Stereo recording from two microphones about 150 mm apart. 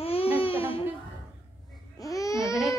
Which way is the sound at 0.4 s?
40° left (ahead or behind).